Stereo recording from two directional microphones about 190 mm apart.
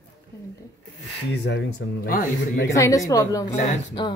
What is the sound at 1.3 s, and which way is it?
Speech, 65° left (ahead or behind).